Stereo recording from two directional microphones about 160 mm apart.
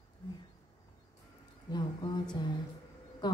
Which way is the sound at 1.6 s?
30° left (ahead or behind).